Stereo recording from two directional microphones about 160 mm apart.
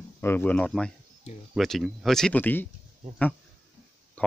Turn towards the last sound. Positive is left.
turn(degrees=10)  # may be behind; listen again after turning